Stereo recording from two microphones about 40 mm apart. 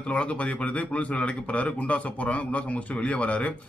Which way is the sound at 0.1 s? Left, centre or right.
Left.